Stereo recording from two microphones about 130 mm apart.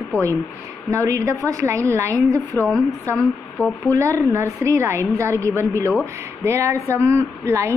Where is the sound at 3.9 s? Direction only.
25° right (ahead or behind).